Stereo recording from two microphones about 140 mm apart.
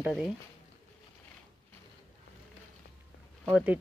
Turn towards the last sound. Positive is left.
turn(degrees=-10)  # may be behind; listen again after turning